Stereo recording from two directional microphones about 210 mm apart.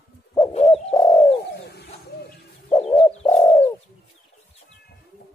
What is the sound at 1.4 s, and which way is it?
Bird, 50° left (ahead or behind).